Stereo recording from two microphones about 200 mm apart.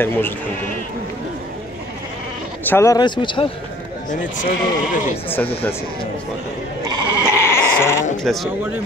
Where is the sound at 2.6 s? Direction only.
15° left (ahead or behind).